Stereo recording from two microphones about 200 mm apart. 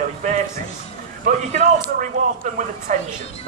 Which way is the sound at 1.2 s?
40° right (ahead or behind).